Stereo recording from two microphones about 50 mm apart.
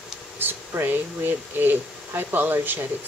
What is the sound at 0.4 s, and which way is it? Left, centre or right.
Speech, right.